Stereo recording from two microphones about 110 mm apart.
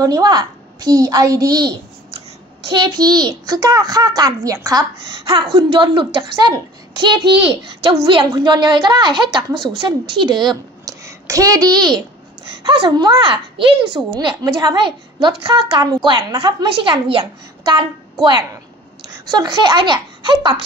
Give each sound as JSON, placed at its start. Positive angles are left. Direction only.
{"t": 0.0, "sound": "a child's voice", "side_deg": -35}
{"t": 2.7, "sound": "a child's voice", "side_deg": -40}
{"t": 5.2, "sound": "a woman's voice", "side_deg": -50}
{"t": 11.1, "sound": "a child's voice", "side_deg": -30}